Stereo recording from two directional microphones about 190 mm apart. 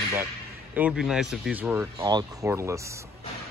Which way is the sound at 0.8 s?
5° right (ahead or behind).